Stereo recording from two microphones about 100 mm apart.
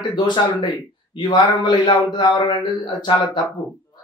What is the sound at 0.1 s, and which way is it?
A man's voice, 50° left (ahead or behind).